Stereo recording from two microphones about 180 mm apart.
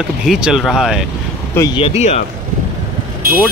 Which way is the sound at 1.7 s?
35° left (ahead or behind).